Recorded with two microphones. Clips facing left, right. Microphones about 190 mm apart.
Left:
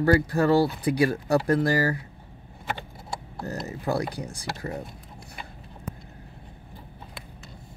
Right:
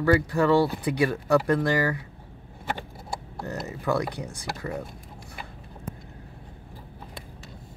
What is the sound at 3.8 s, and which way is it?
Speech, 35° left (ahead or behind).